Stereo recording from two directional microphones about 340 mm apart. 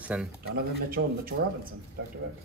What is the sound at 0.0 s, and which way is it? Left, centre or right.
Speech, centre.